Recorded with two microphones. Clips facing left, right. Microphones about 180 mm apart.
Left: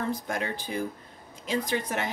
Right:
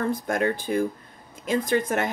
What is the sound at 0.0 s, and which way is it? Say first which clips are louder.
Speech: right 6 dB; 50° right (ahead or behind).